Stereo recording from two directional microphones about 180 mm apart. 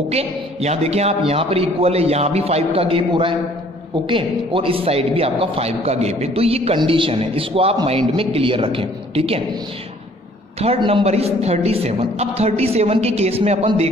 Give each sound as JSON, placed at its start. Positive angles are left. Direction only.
{"t": 0.1, "sound": "a man's voice", "side_deg": -35}
{"t": 10.6, "sound": "a man's voice", "side_deg": -35}